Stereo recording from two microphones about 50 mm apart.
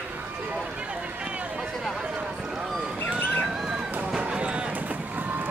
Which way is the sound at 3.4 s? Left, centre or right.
Centre.